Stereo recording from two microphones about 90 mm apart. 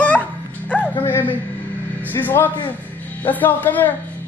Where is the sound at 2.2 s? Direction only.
20° left (ahead or behind).